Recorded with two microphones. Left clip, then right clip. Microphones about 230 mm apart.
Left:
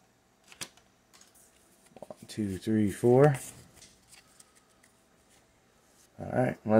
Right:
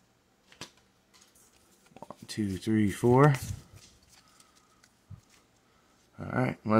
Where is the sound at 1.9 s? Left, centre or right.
Right.